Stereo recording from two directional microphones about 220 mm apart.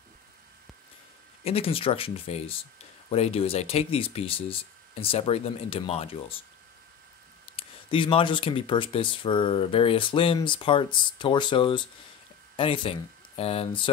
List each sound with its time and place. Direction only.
1.4 s speech: 25° left (ahead or behind)
7.5 s speech: 25° left (ahead or behind)